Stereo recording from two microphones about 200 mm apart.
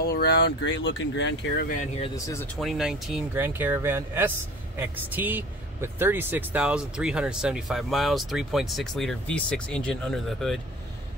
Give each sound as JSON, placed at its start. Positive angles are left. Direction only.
{"t": 0.0, "sound": "speech", "side_deg": 55}
{"t": 2.1, "sound": "speech", "side_deg": 15}
{"t": 2.6, "sound": "speech", "side_deg": 0}